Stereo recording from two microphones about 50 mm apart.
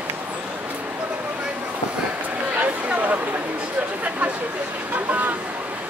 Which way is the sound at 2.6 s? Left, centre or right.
Right.